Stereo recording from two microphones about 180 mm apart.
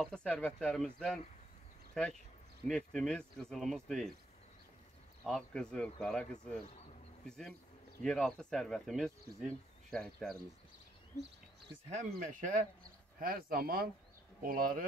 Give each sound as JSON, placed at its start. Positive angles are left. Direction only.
{"t": 0.0, "sound": "speech", "side_deg": 5}
{"t": 5.2, "sound": "speech", "side_deg": 0}
{"t": 12.1, "sound": "speech", "side_deg": -50}